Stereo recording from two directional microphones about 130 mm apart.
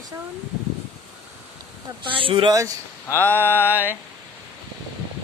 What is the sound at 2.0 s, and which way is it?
Speech, 40° right (ahead or behind).